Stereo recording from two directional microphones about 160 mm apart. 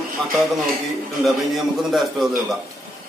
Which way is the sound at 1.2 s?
Centre (ahead or behind).